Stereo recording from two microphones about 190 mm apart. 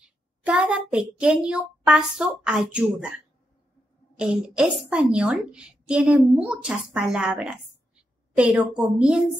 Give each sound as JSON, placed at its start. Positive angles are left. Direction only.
{"t": 0.0, "sound": "a woman's voice", "side_deg": -5}
{"t": 4.2, "sound": "a woman's voice", "side_deg": -5}